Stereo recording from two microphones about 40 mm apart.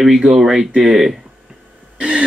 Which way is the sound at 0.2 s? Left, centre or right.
Centre.